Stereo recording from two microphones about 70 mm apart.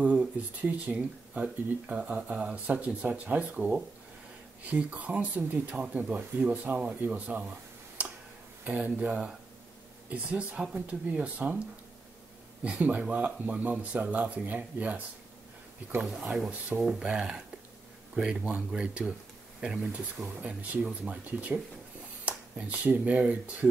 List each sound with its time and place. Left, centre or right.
0.0 s speech: right
8.0 s tick: right
8.6 s speech: right
12.6 s speech: centre
16.3 s speech: centre